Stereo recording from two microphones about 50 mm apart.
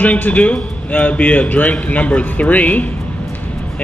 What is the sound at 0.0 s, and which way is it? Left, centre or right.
A man's voice, left.